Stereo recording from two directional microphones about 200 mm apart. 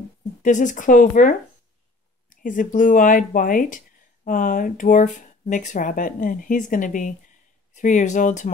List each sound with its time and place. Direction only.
0.4 s speech: 40° left (ahead or behind)